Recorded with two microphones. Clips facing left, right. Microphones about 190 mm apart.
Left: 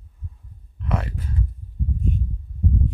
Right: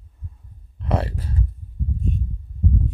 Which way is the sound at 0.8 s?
30° right (ahead or behind).